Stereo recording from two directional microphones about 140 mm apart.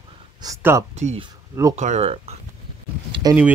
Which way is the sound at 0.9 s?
55° right (ahead or behind).